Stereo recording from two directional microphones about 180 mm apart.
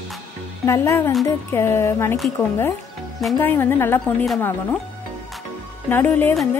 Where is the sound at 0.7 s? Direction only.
15° left (ahead or behind).